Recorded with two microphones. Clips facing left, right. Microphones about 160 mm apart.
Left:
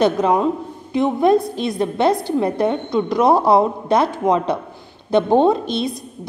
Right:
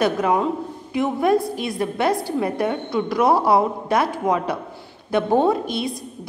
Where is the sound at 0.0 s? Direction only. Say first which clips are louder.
Left 3 dB; 25° left (ahead or behind).